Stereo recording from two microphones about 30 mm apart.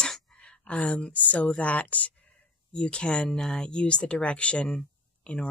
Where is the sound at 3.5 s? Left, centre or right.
Left.